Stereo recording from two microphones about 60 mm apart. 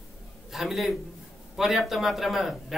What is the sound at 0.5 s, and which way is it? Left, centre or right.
A man's voice, centre.